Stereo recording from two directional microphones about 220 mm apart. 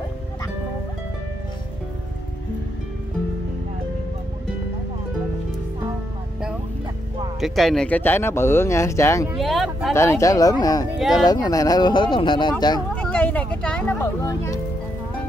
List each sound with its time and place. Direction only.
7.3 s speech: centre (ahead or behind)
9.3 s speech: centre (ahead or behind)
9.9 s speech: 15° left (ahead or behind)
11.0 s speech: centre (ahead or behind)
11.2 s speech: 15° left (ahead or behind)
12.9 s a sound: 5° left (ahead or behind)